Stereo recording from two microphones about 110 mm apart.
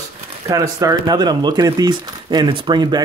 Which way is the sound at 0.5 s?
30° right (ahead or behind).